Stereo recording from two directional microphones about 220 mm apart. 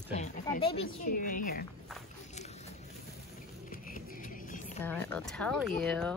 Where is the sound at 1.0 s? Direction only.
40° left (ahead or behind).